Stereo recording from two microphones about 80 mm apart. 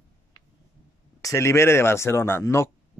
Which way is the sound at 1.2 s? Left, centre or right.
Left.